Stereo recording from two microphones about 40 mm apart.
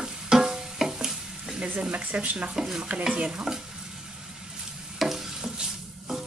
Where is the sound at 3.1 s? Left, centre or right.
Right.